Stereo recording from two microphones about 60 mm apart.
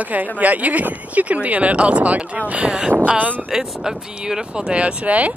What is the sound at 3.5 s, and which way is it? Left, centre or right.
Speech, centre.